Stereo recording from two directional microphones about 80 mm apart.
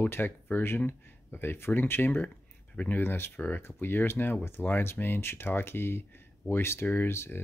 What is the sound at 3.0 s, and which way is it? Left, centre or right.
Speech, left.